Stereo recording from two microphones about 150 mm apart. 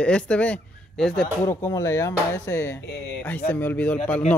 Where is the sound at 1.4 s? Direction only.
20° left (ahead or behind).